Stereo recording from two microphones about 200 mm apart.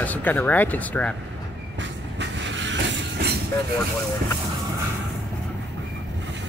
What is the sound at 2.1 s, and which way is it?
Vehicle, 65° right (ahead or behind).